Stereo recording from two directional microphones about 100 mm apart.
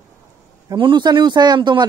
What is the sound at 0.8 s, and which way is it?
Speech, 50° right (ahead or behind).